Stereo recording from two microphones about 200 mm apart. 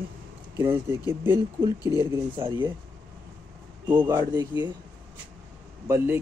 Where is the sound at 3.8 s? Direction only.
10° right (ahead or behind).